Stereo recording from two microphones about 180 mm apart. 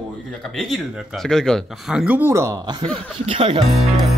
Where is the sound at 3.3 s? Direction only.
30° right (ahead or behind).